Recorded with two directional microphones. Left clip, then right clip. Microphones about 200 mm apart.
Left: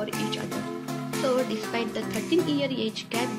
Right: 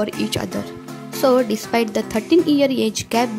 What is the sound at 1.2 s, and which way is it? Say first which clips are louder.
Speech: right 10 dB; 45° right (ahead or behind).